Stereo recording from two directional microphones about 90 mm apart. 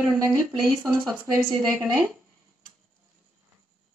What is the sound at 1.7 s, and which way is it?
Speech, 20° right (ahead or behind).